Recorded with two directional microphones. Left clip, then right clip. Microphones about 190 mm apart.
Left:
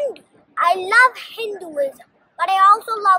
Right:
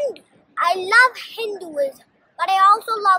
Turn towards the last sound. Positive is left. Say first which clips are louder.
# left 1 dB
turn(degrees=15)  # may be behind; listen again after turning